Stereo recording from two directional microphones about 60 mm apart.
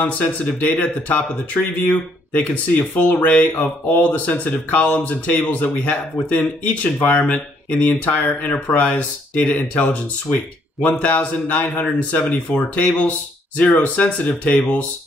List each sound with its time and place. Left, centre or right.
0.0 s speech: left